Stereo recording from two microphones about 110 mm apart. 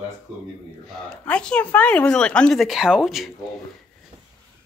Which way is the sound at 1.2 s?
10° left (ahead or behind).